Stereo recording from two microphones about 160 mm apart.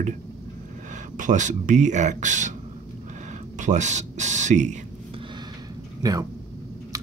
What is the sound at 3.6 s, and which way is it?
Speech, 50° right (ahead or behind).